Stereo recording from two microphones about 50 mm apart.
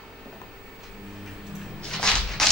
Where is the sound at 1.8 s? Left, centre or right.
Centre.